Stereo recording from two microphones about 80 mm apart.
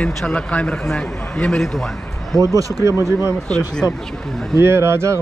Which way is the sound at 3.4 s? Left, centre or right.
Centre.